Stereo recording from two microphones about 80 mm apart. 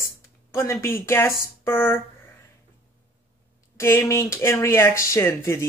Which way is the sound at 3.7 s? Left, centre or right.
Left.